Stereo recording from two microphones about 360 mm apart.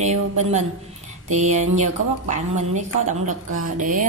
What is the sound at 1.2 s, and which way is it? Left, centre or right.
A woman's voice, centre.